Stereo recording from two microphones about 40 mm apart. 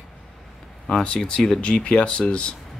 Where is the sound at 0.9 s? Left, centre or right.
Left.